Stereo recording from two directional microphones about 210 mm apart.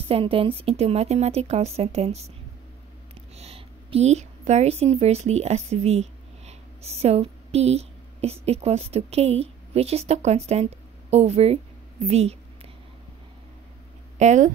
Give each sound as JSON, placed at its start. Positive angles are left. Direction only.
{"t": 0.1, "sound": "a woman's voice", "side_deg": -25}
{"t": 3.3, "sound": "a woman's voice", "side_deg": -30}
{"t": 14.1, "sound": "speech", "side_deg": -35}